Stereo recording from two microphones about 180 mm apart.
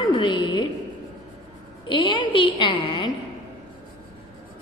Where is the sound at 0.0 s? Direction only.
25° left (ahead or behind).